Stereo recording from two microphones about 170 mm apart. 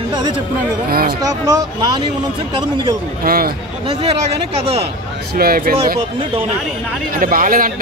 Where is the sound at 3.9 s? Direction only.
35° right (ahead or behind).